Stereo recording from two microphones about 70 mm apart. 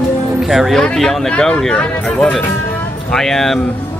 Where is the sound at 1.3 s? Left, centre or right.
Centre.